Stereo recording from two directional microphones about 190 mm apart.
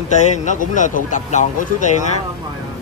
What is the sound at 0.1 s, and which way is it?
Speech, 40° left (ahead or behind).